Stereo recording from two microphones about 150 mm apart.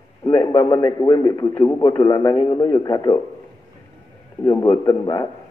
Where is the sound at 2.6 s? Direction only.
25° left (ahead or behind).